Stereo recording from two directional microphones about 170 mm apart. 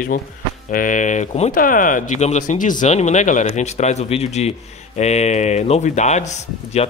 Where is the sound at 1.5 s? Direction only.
55° left (ahead or behind).